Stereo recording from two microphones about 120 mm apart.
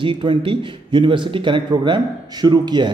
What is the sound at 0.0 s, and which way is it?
A man's voice, 45° right (ahead or behind).